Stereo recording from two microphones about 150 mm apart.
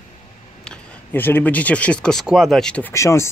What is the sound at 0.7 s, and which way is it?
Speech, 15° left (ahead or behind).